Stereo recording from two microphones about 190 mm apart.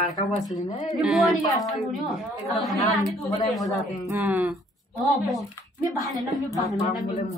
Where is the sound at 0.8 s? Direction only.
Centre (ahead or behind).